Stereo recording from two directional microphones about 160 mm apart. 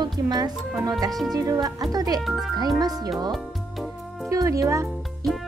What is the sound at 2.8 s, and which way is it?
Speech, 25° right (ahead or behind).